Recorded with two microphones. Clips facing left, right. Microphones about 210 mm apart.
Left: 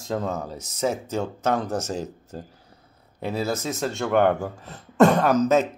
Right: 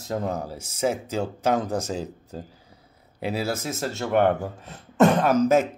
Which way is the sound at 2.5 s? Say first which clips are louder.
Even; 10° right (ahead or behind).